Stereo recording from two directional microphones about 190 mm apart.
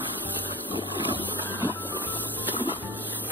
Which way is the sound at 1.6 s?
10° right (ahead or behind).